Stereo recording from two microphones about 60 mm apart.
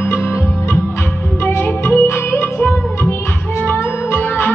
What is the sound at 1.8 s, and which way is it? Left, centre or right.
Music, left.